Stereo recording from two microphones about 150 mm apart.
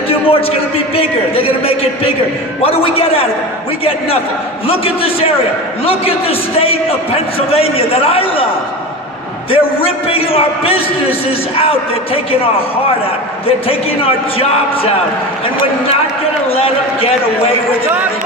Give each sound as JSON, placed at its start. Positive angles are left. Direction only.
{"t": 0.1, "sound": "a man's voice", "side_deg": 40}
{"t": 4.6, "sound": "a man's voice", "side_deg": 40}
{"t": 9.5, "sound": "a man's voice", "side_deg": 40}
{"t": 13.5, "sound": "a man's voice", "side_deg": 40}
{"t": 16.5, "sound": "a man's voice", "side_deg": 40}